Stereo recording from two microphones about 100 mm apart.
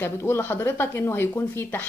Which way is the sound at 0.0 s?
25° left (ahead or behind).